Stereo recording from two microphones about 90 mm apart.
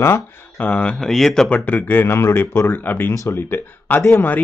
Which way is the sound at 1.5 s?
15° left (ahead or behind).